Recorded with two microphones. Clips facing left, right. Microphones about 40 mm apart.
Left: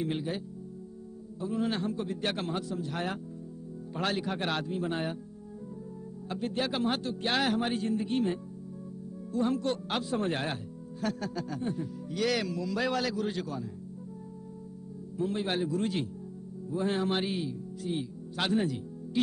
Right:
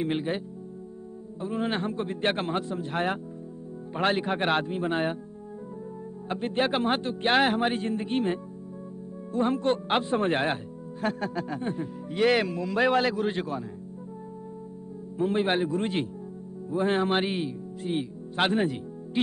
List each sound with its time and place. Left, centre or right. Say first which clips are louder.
0.0 s speech: right 5 dB; right
1.4 s speech: right 2 dB; right
6.2 s speech: right 5 dB; right
15.1 s speech: right 6 dB; right